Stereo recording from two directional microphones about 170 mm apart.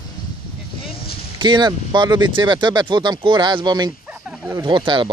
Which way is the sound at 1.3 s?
25° right (ahead or behind).